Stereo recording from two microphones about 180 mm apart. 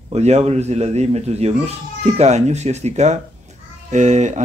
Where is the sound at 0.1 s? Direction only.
35° right (ahead or behind).